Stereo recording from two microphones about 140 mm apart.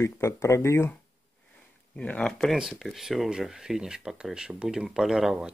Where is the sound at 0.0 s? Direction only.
20° left (ahead or behind).